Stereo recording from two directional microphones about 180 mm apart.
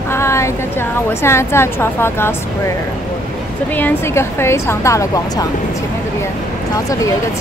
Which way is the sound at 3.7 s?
10° left (ahead or behind).